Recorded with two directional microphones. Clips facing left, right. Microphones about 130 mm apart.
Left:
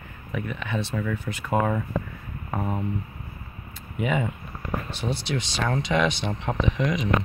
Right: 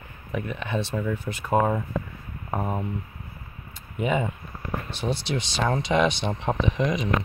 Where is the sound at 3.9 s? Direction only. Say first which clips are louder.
Right 1 dB; 30° right (ahead or behind).